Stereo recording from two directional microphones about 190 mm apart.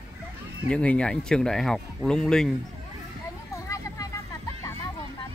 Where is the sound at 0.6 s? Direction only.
5° left (ahead or behind).